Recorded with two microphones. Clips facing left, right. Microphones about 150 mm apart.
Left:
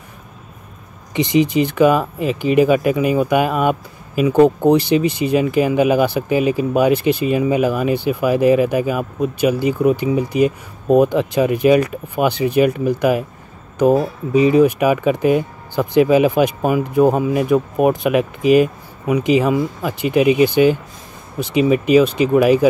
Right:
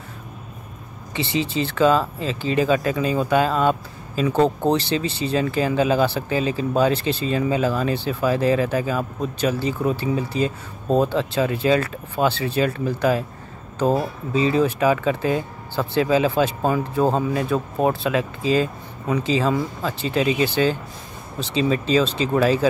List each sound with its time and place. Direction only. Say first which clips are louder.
1.1 s speech: left 8 dB; 15° left (ahead or behind)